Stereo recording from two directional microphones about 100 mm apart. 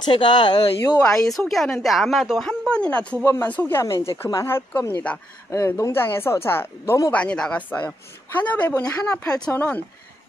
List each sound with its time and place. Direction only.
0.0 s speech: 50° left (ahead or behind)
1.0 s speech: 5° left (ahead or behind)
2.4 s a woman's voice: 10° left (ahead or behind); by 7.0 s 25° left (ahead or behind)
7.1 s a woman's voice: 10° left (ahead or behind)